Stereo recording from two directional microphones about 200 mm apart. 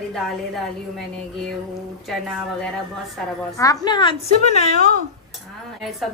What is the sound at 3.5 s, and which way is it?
A woman's voice, 15° left (ahead or behind).